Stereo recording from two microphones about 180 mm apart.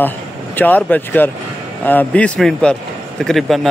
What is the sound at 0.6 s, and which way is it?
A man's voice, 10° left (ahead or behind).